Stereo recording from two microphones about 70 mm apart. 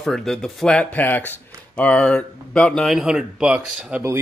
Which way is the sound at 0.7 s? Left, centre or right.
Left.